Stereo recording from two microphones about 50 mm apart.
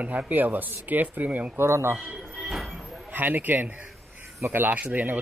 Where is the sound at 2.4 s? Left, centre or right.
Centre.